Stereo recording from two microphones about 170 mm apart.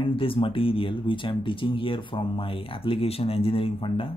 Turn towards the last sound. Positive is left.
turn(degrees=30)  # may be behind; listen again after turning